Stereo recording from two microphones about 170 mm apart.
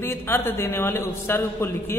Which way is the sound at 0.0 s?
15° left (ahead or behind).